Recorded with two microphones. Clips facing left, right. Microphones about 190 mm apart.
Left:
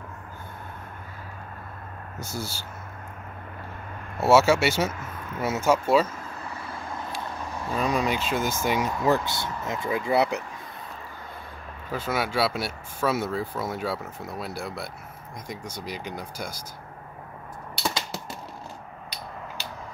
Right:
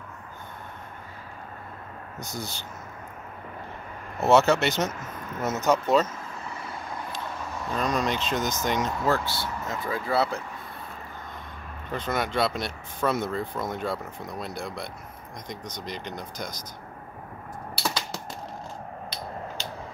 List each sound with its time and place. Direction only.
2.1 s speech: 10° left (ahead or behind)
4.2 s speech: 10° left (ahead or behind)
7.7 s speech: 5° left (ahead or behind)
11.9 s speech: 5° left (ahead or behind)
17.8 s typing: centre (ahead or behind)